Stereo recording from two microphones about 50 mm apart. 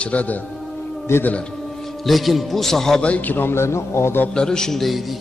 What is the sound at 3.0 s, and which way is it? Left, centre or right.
Speech, left.